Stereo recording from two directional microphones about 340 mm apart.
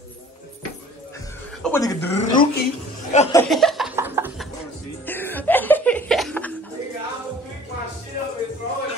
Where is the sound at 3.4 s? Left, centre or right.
Centre.